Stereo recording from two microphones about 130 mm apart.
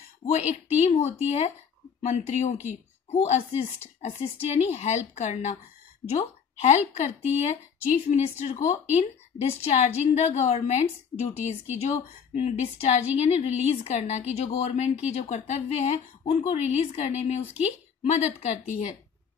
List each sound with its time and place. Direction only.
0.3 s a woman's voice: 60° left (ahead or behind)